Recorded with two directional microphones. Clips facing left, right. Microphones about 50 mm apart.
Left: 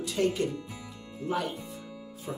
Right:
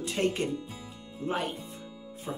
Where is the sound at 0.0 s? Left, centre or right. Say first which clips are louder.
Left 1 dB; right.